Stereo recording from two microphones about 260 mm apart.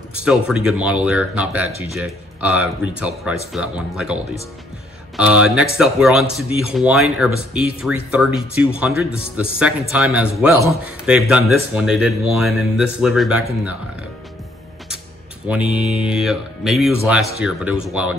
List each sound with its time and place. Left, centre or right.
0.5 s speech: centre
15.4 s speech: centre